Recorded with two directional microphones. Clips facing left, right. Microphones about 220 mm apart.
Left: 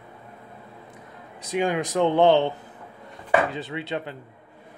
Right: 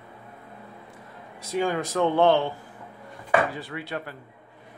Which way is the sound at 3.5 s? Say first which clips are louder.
Left 3 dB; 20° left (ahead or behind).